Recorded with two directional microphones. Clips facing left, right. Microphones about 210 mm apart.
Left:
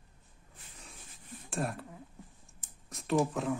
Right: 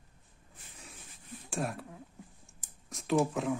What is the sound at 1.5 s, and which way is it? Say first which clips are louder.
Speech: even; centre (ahead or behind).